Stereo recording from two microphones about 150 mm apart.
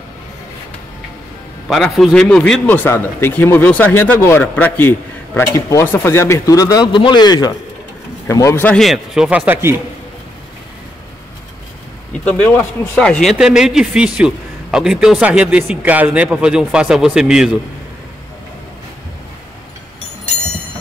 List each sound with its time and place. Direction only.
1.7 s speech: centre (ahead or behind); by 8.6 s 20° left (ahead or behind)
8.6 s speech: centre (ahead or behind); by 9.8 s 15° right (ahead or behind)
12.3 s speech: 10° left (ahead or behind)